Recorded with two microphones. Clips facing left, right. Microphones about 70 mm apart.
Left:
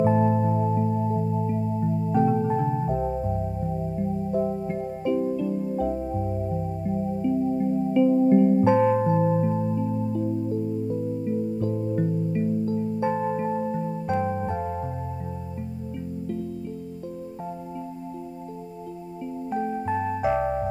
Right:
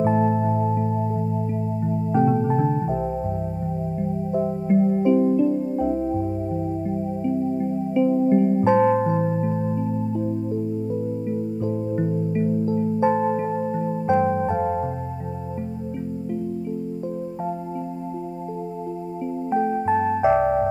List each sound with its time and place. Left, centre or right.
0.0 s music: right
2.1 s music: right
4.3 s music: right
7.9 s music: right
12.0 s music: right
19.5 s music: right